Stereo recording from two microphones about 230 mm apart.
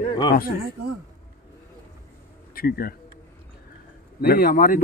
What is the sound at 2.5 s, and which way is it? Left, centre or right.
Speech, left.